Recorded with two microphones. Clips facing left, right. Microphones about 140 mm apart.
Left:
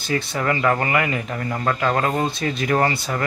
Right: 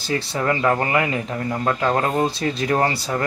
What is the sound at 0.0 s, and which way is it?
Speech, 30° right (ahead or behind).